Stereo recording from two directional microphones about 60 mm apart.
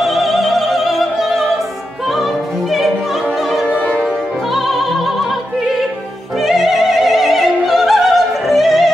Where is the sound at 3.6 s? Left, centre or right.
Left.